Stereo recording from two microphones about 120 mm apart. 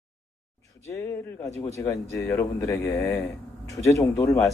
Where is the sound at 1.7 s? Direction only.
25° left (ahead or behind).